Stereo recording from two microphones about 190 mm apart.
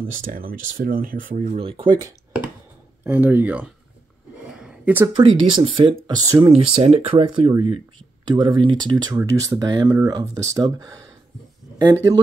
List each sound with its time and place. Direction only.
0.2 s speech: 50° right (ahead or behind)
1.6 s speech: 30° right (ahead or behind)
3.0 s speech: 10° right (ahead or behind)
4.5 s a sound: 5° right (ahead or behind)
5.2 s speech: 30° right (ahead or behind)
6.5 s speech: 30° right (ahead or behind)